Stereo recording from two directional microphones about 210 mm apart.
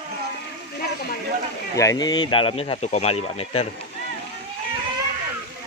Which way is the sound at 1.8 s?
15° left (ahead or behind).